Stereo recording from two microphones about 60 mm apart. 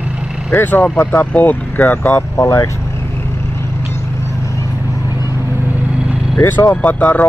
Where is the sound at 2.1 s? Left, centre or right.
Left.